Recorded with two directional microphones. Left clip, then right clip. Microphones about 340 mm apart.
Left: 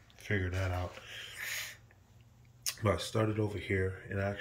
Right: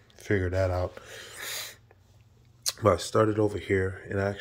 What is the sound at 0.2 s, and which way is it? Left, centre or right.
Speech, centre.